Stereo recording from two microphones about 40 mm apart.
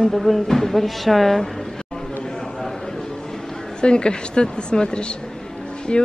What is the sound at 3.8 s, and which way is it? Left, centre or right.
A woman's voice, left.